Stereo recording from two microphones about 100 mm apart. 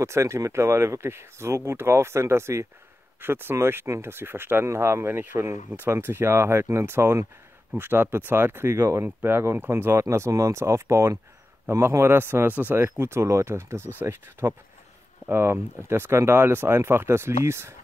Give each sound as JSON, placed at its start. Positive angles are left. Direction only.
{"t": 0.0, "sound": "speech", "side_deg": -30}